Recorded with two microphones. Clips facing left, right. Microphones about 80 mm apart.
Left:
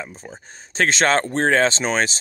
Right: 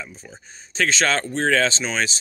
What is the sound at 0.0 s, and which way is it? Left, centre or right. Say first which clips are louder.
Speech: left 4 dB; left.